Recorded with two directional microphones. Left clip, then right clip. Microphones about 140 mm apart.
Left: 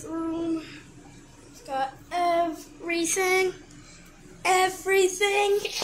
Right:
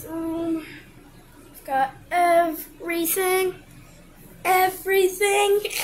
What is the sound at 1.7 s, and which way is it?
Female singing, 40° right (ahead or behind).